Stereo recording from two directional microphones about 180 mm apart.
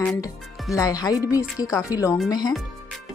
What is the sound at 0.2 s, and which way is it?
Speech, 20° left (ahead or behind).